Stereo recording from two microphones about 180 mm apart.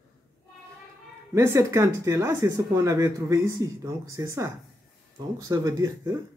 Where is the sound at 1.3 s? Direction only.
15° right (ahead or behind).